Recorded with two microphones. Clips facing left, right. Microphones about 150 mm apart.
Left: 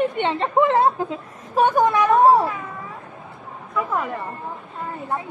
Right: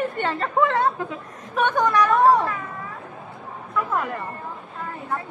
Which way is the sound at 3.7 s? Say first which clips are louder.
Left 1 dB; 10° left (ahead or behind).